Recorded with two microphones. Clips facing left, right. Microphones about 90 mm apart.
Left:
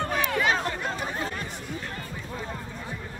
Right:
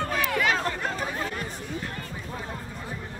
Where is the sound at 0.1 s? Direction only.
30° left (ahead or behind).